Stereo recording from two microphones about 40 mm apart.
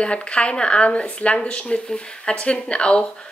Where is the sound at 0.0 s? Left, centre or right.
Left.